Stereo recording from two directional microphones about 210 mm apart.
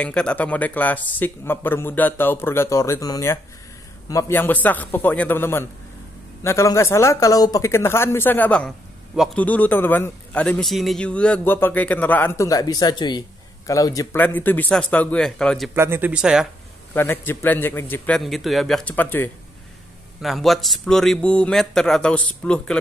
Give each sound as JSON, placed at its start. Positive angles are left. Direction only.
{"t": 0.0, "sound": "speech", "side_deg": 5}
{"t": 15.7, "sound": "speech", "side_deg": -10}
{"t": 16.9, "sound": "a man's voice", "side_deg": 10}